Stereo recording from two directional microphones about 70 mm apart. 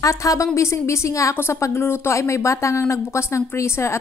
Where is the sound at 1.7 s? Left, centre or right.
Left.